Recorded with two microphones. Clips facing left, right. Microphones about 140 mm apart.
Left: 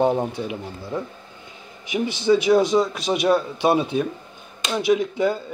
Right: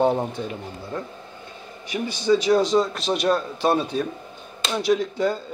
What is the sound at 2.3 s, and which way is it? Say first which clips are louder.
Speech: left 1 dB; 10° left (ahead or behind).